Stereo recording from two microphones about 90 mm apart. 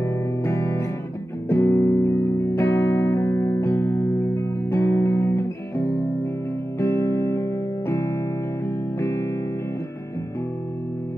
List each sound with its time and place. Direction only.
0.0 s music: 30° left (ahead or behind)